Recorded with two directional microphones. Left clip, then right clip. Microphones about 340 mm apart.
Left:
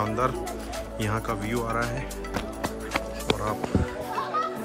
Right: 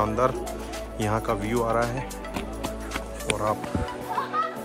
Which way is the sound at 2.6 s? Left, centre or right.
Centre.